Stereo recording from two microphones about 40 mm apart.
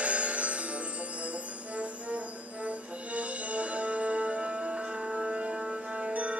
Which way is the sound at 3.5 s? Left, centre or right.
Right.